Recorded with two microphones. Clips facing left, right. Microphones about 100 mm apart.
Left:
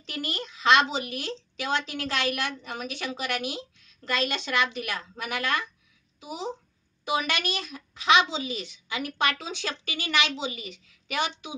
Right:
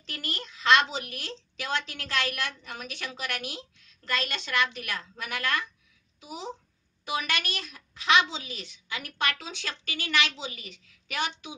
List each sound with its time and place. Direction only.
0.0 s a woman's voice: 15° left (ahead or behind)